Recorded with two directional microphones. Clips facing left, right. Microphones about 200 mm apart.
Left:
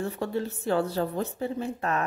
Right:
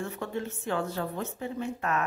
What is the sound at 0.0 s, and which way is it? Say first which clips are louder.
Speech: left 4 dB; 35° left (ahead or behind).